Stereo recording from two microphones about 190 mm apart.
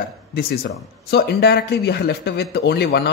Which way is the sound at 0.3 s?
50° left (ahead or behind).